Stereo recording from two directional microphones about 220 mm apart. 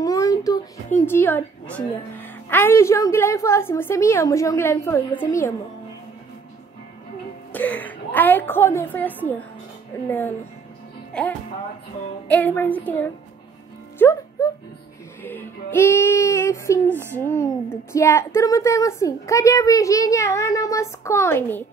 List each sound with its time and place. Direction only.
0.0 s a sound: 15° left (ahead or behind)
1.0 s a woman's voice: 10° left (ahead or behind)
7.5 s a woman's voice: 5° left (ahead or behind)
13.9 s music: 10° left (ahead or behind)
15.2 s a woman's voice: 10° left (ahead or behind)